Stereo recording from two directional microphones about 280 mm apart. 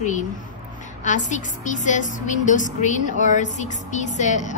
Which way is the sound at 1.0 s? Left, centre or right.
Left.